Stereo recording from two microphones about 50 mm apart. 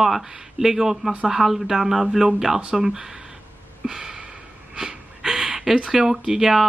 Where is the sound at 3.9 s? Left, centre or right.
Centre.